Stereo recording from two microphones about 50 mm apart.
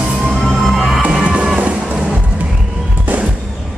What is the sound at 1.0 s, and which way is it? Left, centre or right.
Music, right.